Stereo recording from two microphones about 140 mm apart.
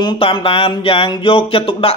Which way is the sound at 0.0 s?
35° left (ahead or behind).